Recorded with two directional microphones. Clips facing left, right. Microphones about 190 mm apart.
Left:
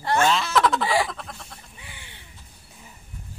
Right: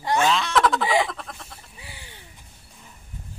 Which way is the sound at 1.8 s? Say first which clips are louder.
Right 2 dB; 35° right (ahead or behind).